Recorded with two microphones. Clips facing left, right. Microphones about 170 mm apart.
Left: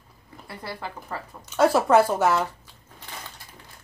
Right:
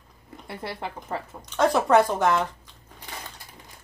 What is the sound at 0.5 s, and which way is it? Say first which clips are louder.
Speech: right 2 dB; 25° right (ahead or behind).